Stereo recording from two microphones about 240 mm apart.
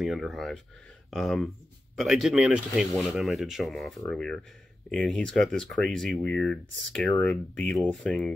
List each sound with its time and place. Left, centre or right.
0.0 s speech: centre